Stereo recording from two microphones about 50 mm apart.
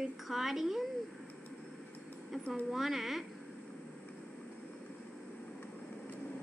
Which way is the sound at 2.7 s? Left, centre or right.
Centre.